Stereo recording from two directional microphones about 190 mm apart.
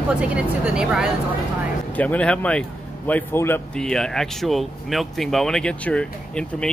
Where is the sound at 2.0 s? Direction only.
5° left (ahead or behind).